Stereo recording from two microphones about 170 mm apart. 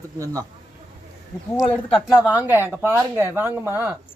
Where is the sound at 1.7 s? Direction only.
5° left (ahead or behind).